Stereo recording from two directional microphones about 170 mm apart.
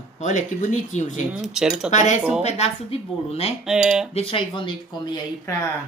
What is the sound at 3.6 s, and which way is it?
Speech, 5° right (ahead or behind).